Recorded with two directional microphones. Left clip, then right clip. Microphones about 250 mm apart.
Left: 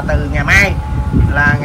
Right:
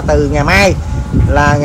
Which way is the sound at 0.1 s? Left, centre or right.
Centre.